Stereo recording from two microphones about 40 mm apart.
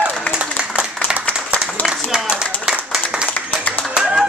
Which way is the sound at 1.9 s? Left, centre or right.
Centre.